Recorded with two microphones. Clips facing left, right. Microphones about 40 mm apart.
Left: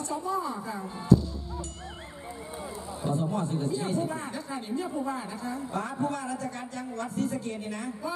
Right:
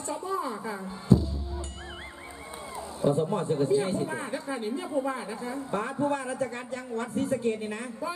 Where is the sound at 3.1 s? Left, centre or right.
Right.